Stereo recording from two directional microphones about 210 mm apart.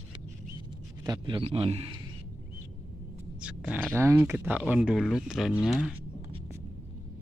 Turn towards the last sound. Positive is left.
turn(degrees=0)  # may be behind; listen again after turning